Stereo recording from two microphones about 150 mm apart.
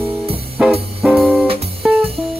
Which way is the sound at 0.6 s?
5° right (ahead or behind).